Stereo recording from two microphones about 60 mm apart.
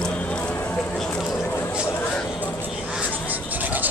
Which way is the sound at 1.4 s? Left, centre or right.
Left.